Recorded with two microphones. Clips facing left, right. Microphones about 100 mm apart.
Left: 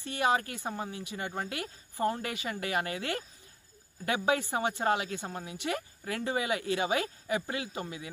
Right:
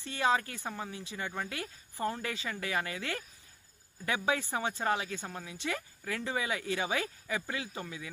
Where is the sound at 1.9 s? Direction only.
20° left (ahead or behind).